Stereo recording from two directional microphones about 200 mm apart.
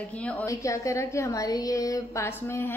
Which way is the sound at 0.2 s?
5° left (ahead or behind).